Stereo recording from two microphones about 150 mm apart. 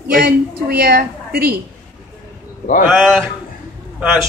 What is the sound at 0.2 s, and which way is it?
A woman's voice, 90° right.